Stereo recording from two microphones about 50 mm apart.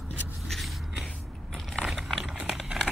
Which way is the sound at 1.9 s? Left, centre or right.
Centre.